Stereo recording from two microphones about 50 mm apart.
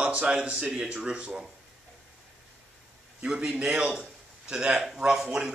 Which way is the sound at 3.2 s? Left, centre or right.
Centre.